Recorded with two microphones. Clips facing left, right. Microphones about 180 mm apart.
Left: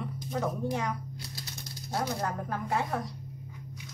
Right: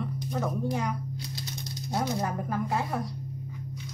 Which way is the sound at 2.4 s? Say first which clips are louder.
Right 2 dB; 5° right (ahead or behind).